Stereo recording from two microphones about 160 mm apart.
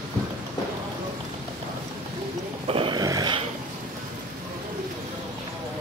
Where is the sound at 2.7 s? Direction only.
30° right (ahead or behind).